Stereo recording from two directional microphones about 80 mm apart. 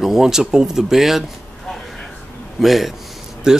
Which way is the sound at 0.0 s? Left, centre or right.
Centre.